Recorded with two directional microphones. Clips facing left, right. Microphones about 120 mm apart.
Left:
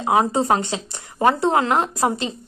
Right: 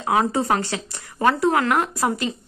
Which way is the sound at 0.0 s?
20° left (ahead or behind).